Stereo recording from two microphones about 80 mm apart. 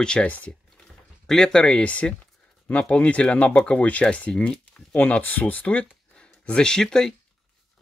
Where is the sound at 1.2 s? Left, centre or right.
Centre.